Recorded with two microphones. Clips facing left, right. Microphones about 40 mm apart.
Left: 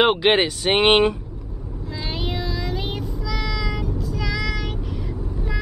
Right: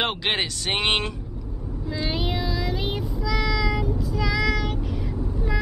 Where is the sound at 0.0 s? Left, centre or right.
Centre.